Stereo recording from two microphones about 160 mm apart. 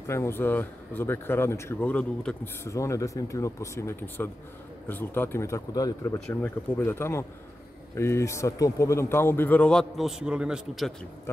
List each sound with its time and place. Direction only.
0.0 s speech: 15° left (ahead or behind); by 10.9 s 5° right (ahead or behind)